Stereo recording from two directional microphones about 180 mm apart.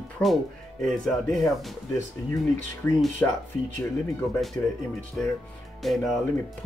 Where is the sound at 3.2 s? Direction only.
10° left (ahead or behind).